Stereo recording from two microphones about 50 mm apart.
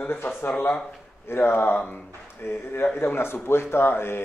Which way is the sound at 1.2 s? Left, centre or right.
Left.